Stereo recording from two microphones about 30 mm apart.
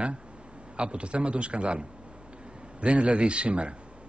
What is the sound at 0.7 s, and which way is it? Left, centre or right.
A man's voice, right.